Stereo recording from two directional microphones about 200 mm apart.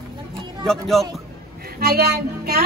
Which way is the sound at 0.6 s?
Centre (ahead or behind).